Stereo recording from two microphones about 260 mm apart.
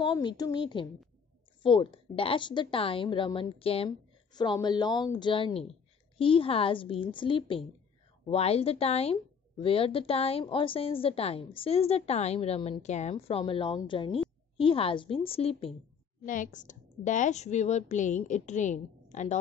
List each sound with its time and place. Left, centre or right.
0.0 s a woman's voice: centre